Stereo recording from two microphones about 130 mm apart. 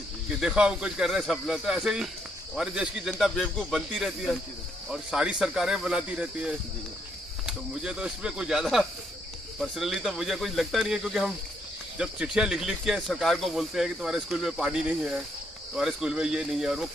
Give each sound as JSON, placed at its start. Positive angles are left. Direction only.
{"t": 0.4, "sound": "speech", "side_deg": -5}